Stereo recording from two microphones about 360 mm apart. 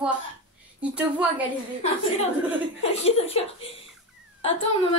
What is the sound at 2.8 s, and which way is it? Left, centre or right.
Speech, centre.